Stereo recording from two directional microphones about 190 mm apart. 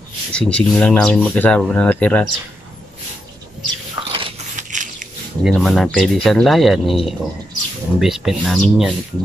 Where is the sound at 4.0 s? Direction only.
20° right (ahead or behind).